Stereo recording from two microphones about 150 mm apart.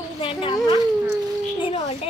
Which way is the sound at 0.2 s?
35° left (ahead or behind).